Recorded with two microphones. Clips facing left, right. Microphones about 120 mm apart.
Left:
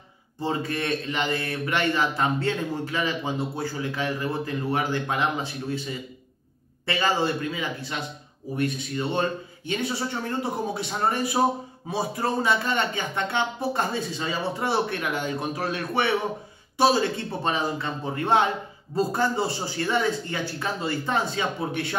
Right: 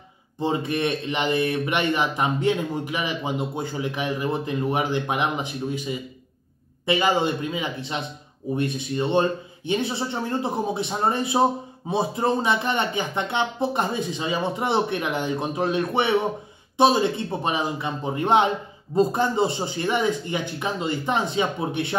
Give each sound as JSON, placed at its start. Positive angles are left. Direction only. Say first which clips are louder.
{"t": 0.4, "sound": "a man's voice", "louder": "right 4 dB", "side_deg": -20}